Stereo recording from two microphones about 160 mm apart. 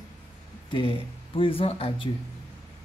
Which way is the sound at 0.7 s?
35° left (ahead or behind).